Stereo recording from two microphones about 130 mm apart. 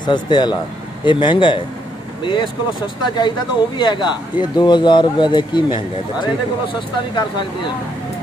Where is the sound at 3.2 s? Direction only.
35° left (ahead or behind).